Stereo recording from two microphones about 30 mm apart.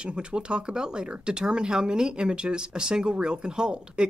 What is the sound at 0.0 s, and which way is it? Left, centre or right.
Speech, right.